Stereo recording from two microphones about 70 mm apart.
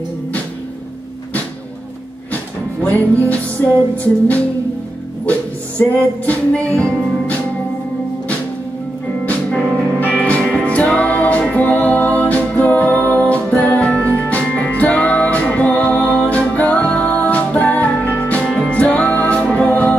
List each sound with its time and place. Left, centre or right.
3.2 s music: left
5.8 s music: left
9.5 s music: centre; by 13.7 s left
13.7 s music: left
18.5 s music: centre
18.8 s music: left